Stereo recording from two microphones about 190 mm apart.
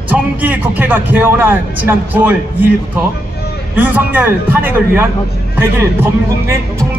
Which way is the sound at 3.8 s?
10° right (ahead or behind).